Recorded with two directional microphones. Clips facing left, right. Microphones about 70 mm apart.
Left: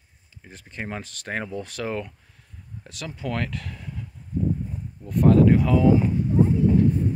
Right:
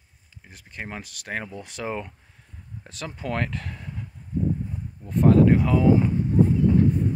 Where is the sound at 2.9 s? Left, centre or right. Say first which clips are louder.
Even; right.